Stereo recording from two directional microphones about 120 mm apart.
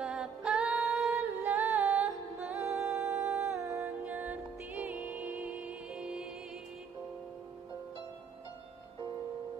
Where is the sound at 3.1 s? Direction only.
5° right (ahead or behind).